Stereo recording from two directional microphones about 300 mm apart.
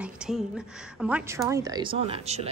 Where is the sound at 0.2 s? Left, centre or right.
Centre.